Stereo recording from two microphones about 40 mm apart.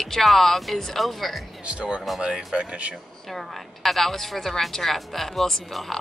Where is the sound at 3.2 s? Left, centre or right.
Centre.